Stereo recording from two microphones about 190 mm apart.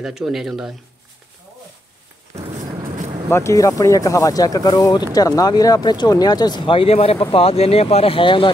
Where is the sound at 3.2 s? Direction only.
15° left (ahead or behind).